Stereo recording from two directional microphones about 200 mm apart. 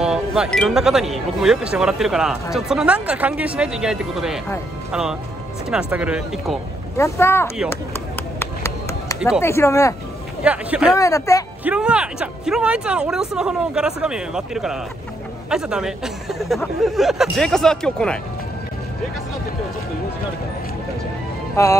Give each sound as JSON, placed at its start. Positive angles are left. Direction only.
{"t": 0.0, "sound": "speech", "side_deg": -5}
{"t": 5.7, "sound": "speech", "side_deg": -5}
{"t": 7.0, "sound": "speech", "side_deg": 10}
{"t": 7.7, "sound": "chop", "side_deg": 10}
{"t": 9.4, "sound": "speech", "side_deg": 15}
{"t": 10.4, "sound": "speech", "side_deg": -5}
{"t": 11.0, "sound": "speech", "side_deg": 15}
{"t": 11.6, "sound": "speech", "side_deg": -5}
{"t": 21.6, "sound": "speech", "side_deg": 15}